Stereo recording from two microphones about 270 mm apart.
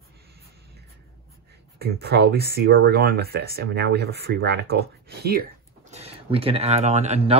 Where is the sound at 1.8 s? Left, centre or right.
Right.